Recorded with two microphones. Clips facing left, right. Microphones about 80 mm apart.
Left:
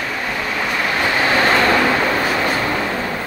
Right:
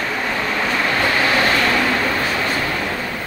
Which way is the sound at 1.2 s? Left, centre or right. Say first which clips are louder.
Left 2 dB; left.